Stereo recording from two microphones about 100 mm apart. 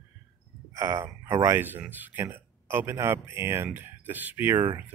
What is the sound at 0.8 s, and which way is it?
A man's voice, 30° right (ahead or behind).